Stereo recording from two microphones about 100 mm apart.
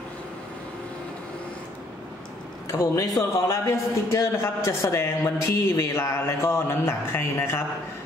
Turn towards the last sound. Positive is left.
turn(degrees=25)  # may be behind; listen again after turning